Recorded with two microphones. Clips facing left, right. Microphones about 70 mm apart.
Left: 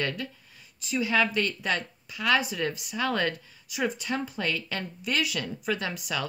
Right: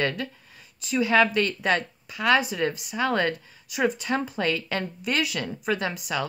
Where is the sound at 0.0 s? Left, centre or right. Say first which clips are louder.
Right 4 dB; right.